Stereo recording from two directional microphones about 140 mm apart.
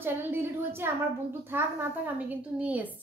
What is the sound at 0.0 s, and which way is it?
A woman's voice, 15° right (ahead or behind).